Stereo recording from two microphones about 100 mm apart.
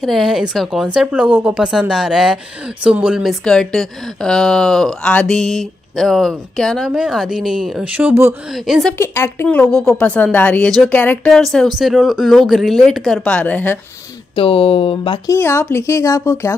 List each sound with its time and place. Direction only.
0.0 s a woman's voice: centre (ahead or behind)
3.4 s speech: 5° left (ahead or behind)
7.9 s speech: 15° right (ahead or behind)
8.5 s speech: 5° right (ahead or behind)
8.9 s a woman's voice: 25° left (ahead or behind)
9.5 s speech: 10° left (ahead or behind)
11.3 s speech: 5° left (ahead or behind)
14.3 s speech: 70° left (ahead or behind)
15.2 s a woman's voice: 25° left (ahead or behind)